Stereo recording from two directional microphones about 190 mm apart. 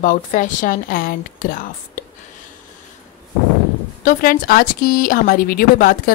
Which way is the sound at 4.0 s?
45° left (ahead or behind).